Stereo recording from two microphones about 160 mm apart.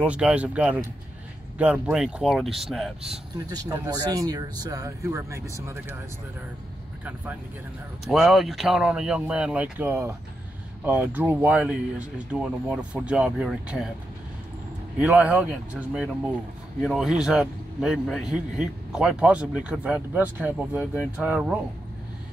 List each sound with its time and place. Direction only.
0.0 s a man's voice: 5° right (ahead or behind)
3.3 s speech: 20° right (ahead or behind)
8.0 s a man's voice: centre (ahead or behind)
15.0 s a man's voice: 5° right (ahead or behind)